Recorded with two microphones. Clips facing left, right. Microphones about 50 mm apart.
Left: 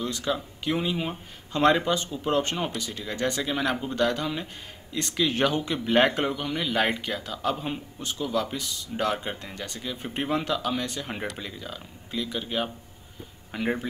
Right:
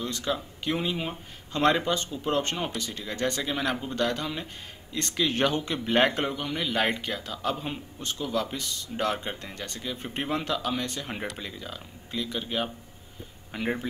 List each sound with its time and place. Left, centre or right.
0.0 s speech: centre
3.2 s speech: centre
3.4 s speech: centre